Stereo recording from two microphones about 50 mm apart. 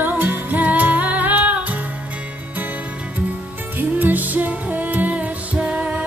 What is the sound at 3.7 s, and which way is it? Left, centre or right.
Music, right.